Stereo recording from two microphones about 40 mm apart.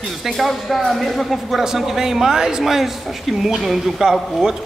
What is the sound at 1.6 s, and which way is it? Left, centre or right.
Speech, centre.